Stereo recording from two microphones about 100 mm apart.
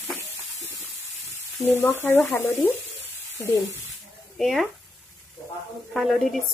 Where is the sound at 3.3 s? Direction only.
35° left (ahead or behind).